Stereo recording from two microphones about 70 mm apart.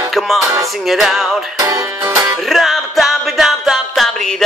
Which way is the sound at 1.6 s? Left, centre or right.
Right.